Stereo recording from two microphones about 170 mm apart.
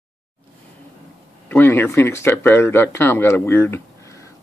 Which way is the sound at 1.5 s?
10° left (ahead or behind).